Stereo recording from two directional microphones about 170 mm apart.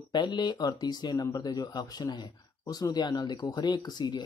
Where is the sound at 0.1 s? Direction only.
25° left (ahead or behind).